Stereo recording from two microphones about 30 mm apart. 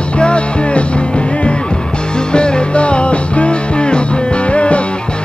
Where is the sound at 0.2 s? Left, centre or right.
Left.